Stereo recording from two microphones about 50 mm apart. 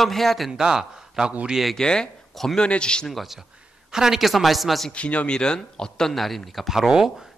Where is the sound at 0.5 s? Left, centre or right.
Centre.